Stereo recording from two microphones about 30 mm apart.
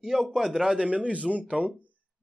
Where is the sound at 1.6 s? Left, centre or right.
Right.